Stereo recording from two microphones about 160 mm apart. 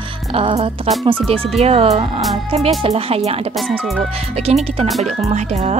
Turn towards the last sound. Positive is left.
turn(degrees=-45)  # may be behind; listen again after turning